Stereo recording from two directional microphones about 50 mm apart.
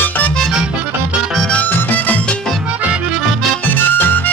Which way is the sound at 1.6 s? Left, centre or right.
Left.